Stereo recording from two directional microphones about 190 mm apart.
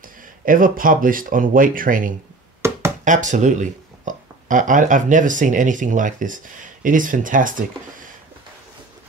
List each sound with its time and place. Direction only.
0.5 s speech: 45° right (ahead or behind)
2.6 s a sound: 15° right (ahead or behind)
3.1 s speech: 40° right (ahead or behind)